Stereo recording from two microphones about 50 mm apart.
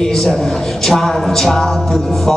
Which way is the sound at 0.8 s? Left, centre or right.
Centre.